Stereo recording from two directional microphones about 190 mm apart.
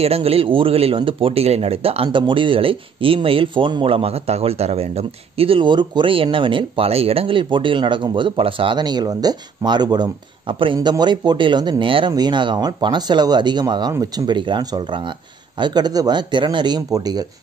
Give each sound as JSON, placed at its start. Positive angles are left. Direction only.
{"t": 0.0, "sound": "speech", "side_deg": -30}